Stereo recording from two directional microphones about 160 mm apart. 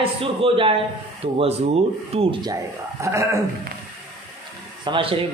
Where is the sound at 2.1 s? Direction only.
25° right (ahead or behind).